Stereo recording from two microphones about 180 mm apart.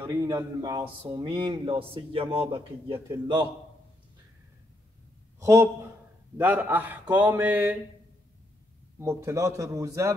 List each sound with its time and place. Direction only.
0.0 s speech: 15° right (ahead or behind)
5.4 s a man's voice: 15° right (ahead or behind)
9.0 s a man's voice: 15° right (ahead or behind)